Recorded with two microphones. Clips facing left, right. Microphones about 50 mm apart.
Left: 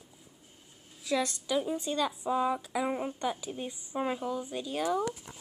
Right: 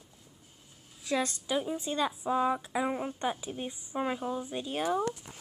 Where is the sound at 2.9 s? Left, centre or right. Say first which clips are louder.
Left 1 dB; centre.